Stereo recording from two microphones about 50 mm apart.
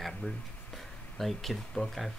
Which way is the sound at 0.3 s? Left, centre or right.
Left.